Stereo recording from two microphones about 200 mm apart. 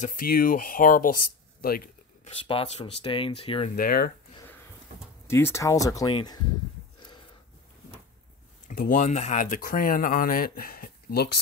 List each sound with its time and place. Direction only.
0.0 s speech: 45° left (ahead or behind)
2.4 s speech: 25° left (ahead or behind)
3.7 s speech: 45° left (ahead or behind)
5.2 s speech: 10° left (ahead or behind)
7.0 s wheeze: 25° left (ahead or behind)
8.6 s speech: 40° left (ahead or behind)